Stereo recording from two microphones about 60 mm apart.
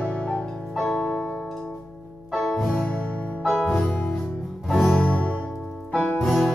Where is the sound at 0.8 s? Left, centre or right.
Centre.